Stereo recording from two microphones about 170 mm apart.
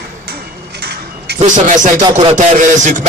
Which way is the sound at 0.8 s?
70° right (ahead or behind).